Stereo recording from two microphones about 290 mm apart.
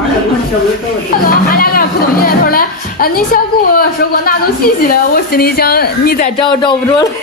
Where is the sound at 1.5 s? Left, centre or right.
Left.